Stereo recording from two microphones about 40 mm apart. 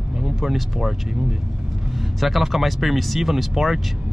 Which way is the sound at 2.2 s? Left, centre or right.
Centre.